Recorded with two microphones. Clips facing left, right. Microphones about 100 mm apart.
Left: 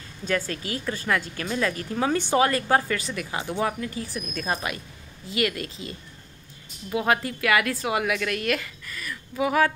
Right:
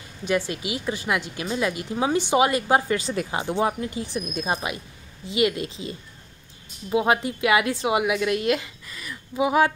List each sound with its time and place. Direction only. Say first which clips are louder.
0.2 s speech: right 3 dB; 15° right (ahead or behind)
3.0 s a woman's voice: right 4 dB; 25° right (ahead or behind)